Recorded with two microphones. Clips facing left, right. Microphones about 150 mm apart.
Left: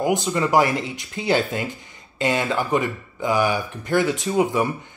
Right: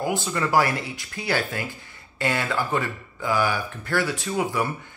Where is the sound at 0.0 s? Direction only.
20° left (ahead or behind).